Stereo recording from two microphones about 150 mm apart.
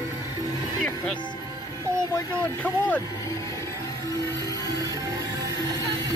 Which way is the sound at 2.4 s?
10° left (ahead or behind).